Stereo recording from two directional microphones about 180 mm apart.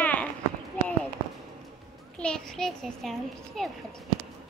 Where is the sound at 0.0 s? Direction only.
10° left (ahead or behind).